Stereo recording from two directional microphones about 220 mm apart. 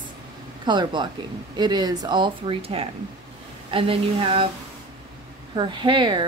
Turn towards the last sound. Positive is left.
turn(degrees=-20)  # may be behind; listen again after turning